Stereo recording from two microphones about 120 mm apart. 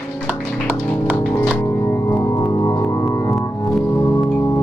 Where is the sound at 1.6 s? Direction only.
25° left (ahead or behind).